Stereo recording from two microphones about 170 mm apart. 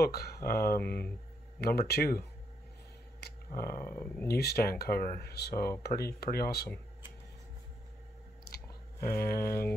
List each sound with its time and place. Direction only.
0.0 s speech: 65° left (ahead or behind)
3.5 s speech: 60° left (ahead or behind)
3.9 s speech: 15° left (ahead or behind)
4.3 s speech: 70° left (ahead or behind)
8.5 s chewing: 65° left (ahead or behind)
9.0 s speech: 55° left (ahead or behind)